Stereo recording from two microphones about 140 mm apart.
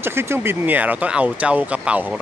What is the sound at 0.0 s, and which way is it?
Speech, 15° right (ahead or behind).